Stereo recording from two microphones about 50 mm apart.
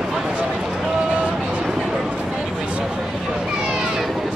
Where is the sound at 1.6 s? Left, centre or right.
Centre.